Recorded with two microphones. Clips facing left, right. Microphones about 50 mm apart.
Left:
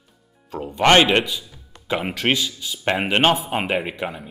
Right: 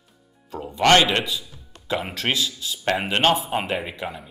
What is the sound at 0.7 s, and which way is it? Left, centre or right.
Speech, left.